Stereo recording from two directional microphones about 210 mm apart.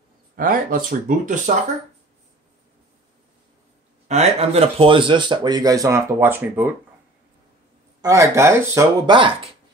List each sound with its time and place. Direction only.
0.4 s speech: 40° right (ahead or behind)
4.1 s speech: 30° right (ahead or behind); by 6.7 s 10° right (ahead or behind)
8.0 s speech: 15° right (ahead or behind)